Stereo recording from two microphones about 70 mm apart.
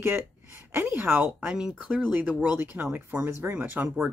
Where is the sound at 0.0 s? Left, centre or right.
Right.